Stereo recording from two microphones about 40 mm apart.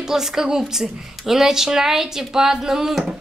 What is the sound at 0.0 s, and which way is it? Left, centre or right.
A woman's voice, centre.